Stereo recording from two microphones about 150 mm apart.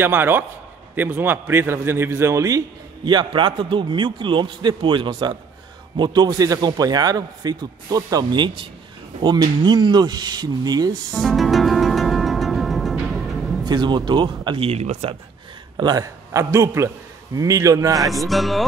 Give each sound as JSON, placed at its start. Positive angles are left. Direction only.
{"t": 0.0, "sound": "a man's voice", "side_deg": -15}
{"t": 3.1, "sound": "a man's voice", "side_deg": -30}
{"t": 11.1, "sound": "music", "side_deg": 0}
{"t": 13.7, "sound": "a man's voice", "side_deg": -30}
{"t": 15.8, "sound": "a man's voice", "side_deg": -25}
{"t": 18.1, "sound": "music", "side_deg": 0}